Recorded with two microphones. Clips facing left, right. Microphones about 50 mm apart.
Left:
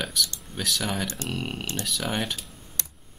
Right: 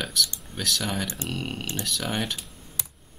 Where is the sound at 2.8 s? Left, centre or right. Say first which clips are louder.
Left 1 dB; centre.